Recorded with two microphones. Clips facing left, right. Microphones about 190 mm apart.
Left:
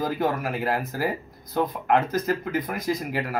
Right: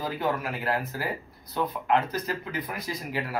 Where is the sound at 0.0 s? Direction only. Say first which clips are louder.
Left 4 dB; 45° left (ahead or behind).